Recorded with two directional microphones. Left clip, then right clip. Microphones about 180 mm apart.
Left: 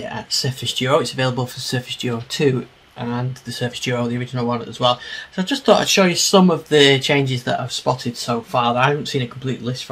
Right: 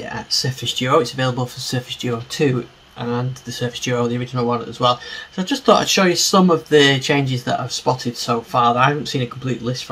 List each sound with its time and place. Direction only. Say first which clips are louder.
0.1 s speech: right 3 dB; 20° left (ahead or behind)